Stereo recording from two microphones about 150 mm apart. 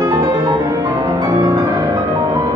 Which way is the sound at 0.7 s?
20° right (ahead or behind).